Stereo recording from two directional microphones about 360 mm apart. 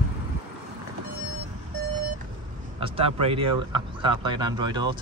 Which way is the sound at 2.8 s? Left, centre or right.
Centre.